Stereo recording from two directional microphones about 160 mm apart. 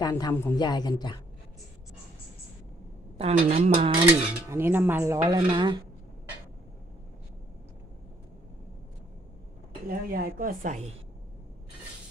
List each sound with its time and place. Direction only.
0.0 s speech: 25° left (ahead or behind)
3.2 s a woman's voice: 40° right (ahead or behind)
4.1 s speech: 15° right (ahead or behind)
9.8 s speech: 70° right (ahead or behind)